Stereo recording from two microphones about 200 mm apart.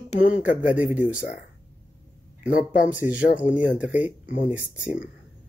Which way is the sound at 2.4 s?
5° right (ahead or behind).